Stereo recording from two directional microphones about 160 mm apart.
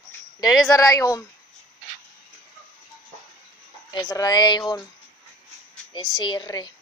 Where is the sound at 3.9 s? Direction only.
25° left (ahead or behind).